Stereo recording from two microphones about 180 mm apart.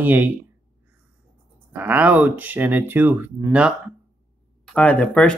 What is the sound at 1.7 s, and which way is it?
Speech, 10° right (ahead or behind).